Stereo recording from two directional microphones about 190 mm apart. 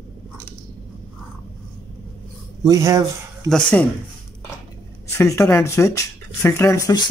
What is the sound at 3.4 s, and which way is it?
Speech, 5° left (ahead or behind).